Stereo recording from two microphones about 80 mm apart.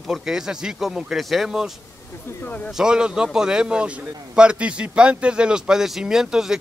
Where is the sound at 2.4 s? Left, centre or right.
Centre.